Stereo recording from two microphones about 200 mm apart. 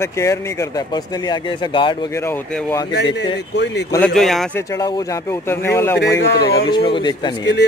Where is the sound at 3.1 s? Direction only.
60° left (ahead or behind).